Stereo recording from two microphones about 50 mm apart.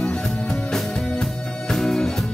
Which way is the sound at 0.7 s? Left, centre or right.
Centre.